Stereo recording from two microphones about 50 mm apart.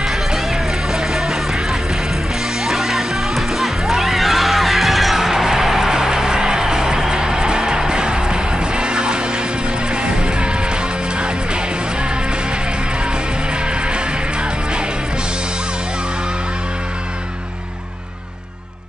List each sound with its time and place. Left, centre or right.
0.9 s music: centre; by 10.5 s right